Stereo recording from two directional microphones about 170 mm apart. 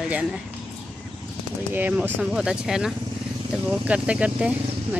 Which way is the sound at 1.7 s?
10° right (ahead or behind).